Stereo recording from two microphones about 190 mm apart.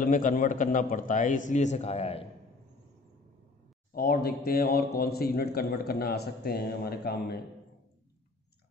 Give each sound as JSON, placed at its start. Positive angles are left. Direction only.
{"t": 0.0, "sound": "a man's voice", "side_deg": 45}
{"t": 3.9, "sound": "a man's voice", "side_deg": 50}